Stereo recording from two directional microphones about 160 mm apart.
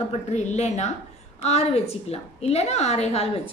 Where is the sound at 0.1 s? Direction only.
45° left (ahead or behind).